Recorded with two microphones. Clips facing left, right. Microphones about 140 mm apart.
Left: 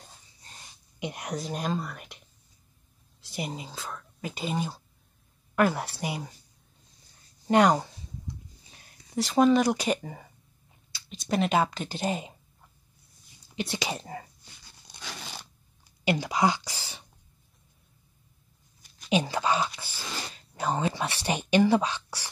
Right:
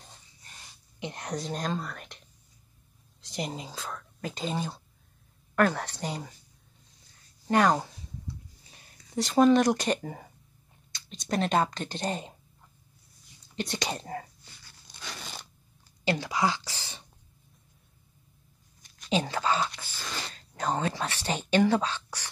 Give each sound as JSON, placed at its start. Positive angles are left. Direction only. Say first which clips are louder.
{"t": 0.9, "sound": "speech", "louder": "left 1 dB", "side_deg": 15}
{"t": 7.4, "sound": "speech", "louder": "left 3 dB", "side_deg": 20}
{"t": 8.7, "sound": "speech", "louder": "left 1 dB", "side_deg": 0}
{"t": 13.6, "sound": "speech", "louder": "left 1 dB", "side_deg": 5}
{"t": 14.4, "sound": "dog", "louder": "even", "side_deg": 15}
{"t": 15.0, "sound": "crunch", "louder": "left 1 dB", "side_deg": 5}
{"t": 16.0, "sound": "speech", "louder": "left 2 dB", "side_deg": 15}
{"t": 18.8, "sound": "speech", "louder": "left 2 dB", "side_deg": 5}